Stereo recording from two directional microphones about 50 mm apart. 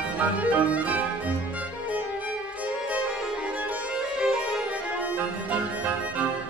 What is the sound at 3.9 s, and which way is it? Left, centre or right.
Music, centre.